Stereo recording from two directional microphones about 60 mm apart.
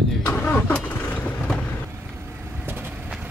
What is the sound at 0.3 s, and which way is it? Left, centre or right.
Vehicle, left.